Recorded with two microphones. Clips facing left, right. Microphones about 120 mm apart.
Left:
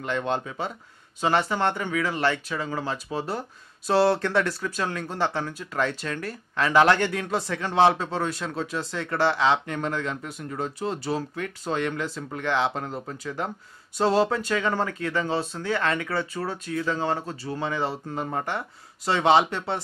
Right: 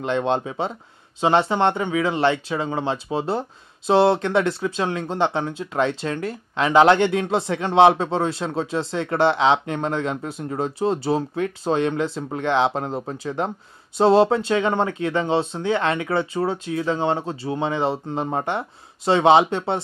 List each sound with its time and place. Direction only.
0.0 s speech: 25° right (ahead or behind)